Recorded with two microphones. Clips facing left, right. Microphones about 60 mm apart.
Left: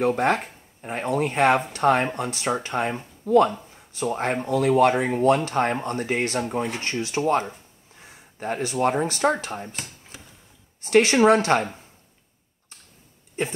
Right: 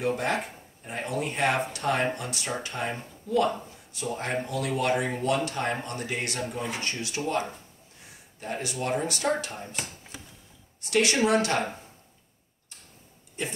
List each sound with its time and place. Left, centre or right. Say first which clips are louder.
0.0 s speech: left 6 dB; left
3.3 s speech: left 8 dB; left
3.9 s speech: left 6 dB; left
10.8 s speech: left 7 dB; left